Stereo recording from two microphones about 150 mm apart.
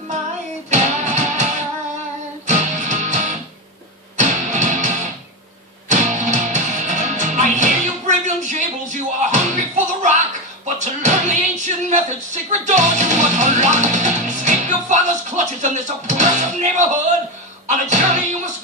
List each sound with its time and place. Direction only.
0.7 s music: 50° right (ahead or behind)